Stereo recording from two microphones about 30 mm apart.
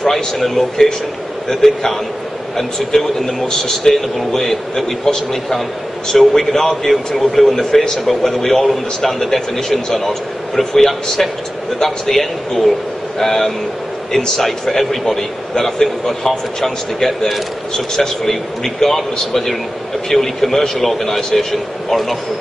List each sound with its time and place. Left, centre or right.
0.0 s a man's voice: centre